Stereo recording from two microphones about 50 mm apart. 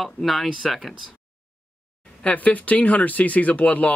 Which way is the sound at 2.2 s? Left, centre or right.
Left.